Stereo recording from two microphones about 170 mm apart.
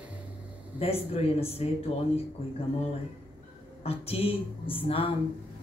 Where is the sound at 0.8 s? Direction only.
35° left (ahead or behind).